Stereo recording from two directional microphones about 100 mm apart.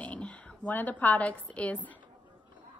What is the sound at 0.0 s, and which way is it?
A woman's voice, 15° left (ahead or behind).